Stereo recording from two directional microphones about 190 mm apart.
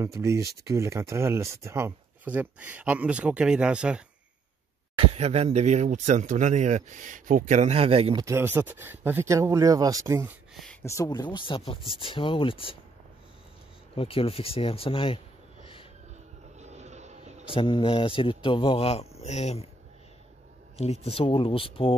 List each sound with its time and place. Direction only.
0.0 s speech: 15° right (ahead or behind)
4.9 s speech: 30° right (ahead or behind)
8.3 s speech: 10° right (ahead or behind)
10.5 s a sound: centre (ahead or behind)
10.8 s a man's voice: 15° left (ahead or behind)
13.9 s a man's voice: 30° left (ahead or behind)
16.5 s a sound: 35° right (ahead or behind)
17.6 s a man's voice: 25° left (ahead or behind)
20.7 s a man's voice: 35° left (ahead or behind)